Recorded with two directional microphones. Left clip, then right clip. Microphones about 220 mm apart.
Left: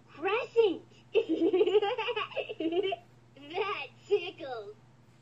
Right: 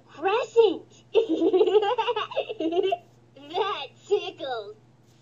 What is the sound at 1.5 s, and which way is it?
Baby laughter, 5° left (ahead or behind).